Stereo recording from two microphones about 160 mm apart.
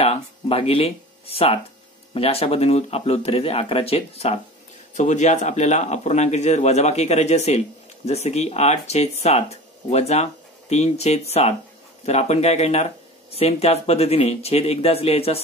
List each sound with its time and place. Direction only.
0.0 s speech: 40° left (ahead or behind)